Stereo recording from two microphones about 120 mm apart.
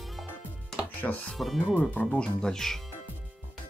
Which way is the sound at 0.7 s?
10° left (ahead or behind).